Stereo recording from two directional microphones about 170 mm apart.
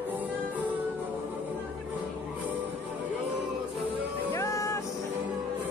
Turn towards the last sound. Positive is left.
turn(degrees=15)  # may be behind; listen again after turning